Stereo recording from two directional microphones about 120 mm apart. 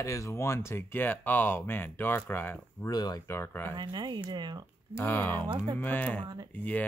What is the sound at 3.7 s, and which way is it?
Speech, 35° right (ahead or behind).